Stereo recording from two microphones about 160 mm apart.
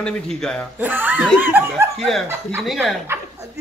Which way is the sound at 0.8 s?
10° right (ahead or behind).